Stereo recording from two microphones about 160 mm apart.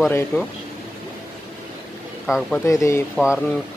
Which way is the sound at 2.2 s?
Centre (ahead or behind).